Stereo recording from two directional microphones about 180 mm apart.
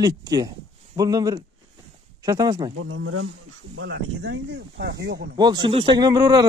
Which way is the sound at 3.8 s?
75° right (ahead or behind).